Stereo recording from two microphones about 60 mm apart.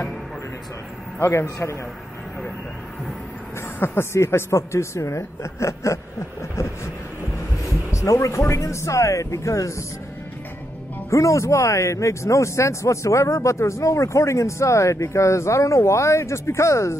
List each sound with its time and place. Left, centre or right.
1.4 s a woman's voice: left
3.8 s a woman's voice: left
7.9 s speech: left
11.1 s speech: left